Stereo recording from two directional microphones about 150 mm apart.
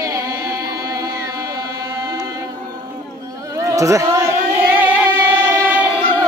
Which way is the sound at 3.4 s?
20° right (ahead or behind).